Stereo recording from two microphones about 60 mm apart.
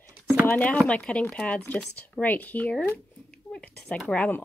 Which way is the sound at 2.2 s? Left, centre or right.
Left.